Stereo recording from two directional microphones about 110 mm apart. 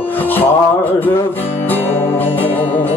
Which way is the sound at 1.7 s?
20° left (ahead or behind).